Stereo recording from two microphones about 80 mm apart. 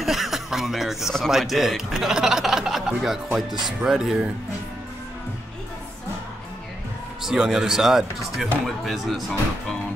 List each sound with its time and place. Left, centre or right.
0.0 s speech: centre
7.2 s speech: centre